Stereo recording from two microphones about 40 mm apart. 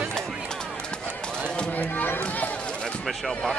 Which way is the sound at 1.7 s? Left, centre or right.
Left.